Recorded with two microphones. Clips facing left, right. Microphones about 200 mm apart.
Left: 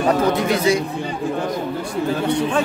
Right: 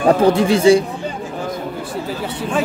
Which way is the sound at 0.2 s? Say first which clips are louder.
Right 5 dB; 30° right (ahead or behind).